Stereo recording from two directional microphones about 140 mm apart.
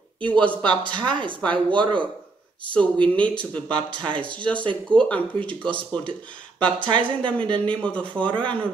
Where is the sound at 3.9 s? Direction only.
35° right (ahead or behind).